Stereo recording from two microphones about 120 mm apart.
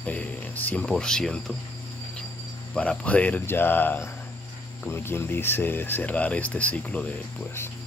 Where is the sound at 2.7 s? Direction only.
10° left (ahead or behind).